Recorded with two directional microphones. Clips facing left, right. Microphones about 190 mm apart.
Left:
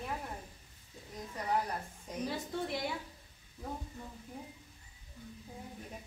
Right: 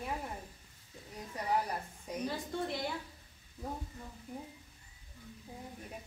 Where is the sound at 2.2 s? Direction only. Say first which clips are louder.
Even; centre (ahead or behind).